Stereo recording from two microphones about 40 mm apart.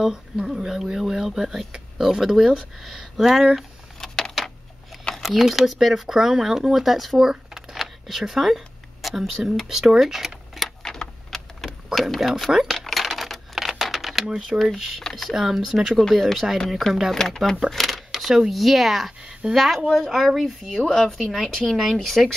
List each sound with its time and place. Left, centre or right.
0.0 s speech: centre
4.0 s a sound: centre
5.1 s a sound: centre
5.4 s speech: centre
10.8 s a sound: centre
14.5 s speech: centre
15.3 s speech: centre
16.0 s speech: centre
20.8 s speech: centre